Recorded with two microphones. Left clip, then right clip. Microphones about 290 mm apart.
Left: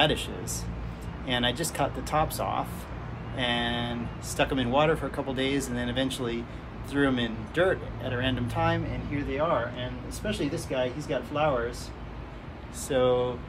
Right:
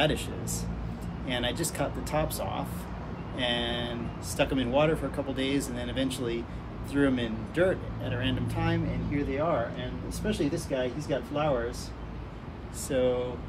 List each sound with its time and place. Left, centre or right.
0.0 s speech: centre
10.2 s speech: centre
12.8 s speech: centre